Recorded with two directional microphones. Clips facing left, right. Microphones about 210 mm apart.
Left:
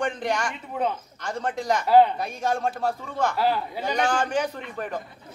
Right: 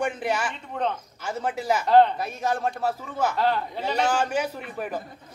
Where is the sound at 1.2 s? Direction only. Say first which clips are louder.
Even; 5° right (ahead or behind).